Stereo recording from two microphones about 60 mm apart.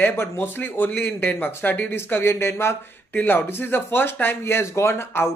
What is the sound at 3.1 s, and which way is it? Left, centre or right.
Speech, left.